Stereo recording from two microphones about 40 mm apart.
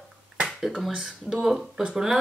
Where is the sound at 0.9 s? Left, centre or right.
Centre.